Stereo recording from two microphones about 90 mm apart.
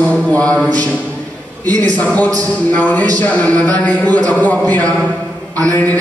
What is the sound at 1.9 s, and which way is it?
A man's voice, 20° left (ahead or behind).